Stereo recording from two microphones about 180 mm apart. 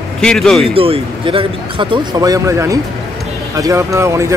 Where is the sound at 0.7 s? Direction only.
30° right (ahead or behind).